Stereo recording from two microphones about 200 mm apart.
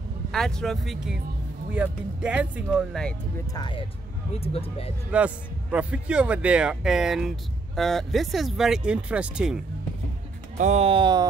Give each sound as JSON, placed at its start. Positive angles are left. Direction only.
{"t": 0.3, "sound": "a man's voice", "side_deg": 5}
{"t": 3.5, "sound": "speech", "side_deg": 25}
{"t": 5.1, "sound": "a man's voice", "side_deg": -5}
{"t": 10.6, "sound": "speech", "side_deg": -30}